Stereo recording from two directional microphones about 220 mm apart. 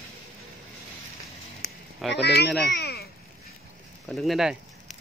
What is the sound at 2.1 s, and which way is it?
Speech, 50° left (ahead or behind).